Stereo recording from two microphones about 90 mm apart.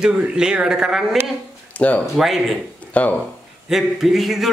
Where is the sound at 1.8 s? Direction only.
15° left (ahead or behind).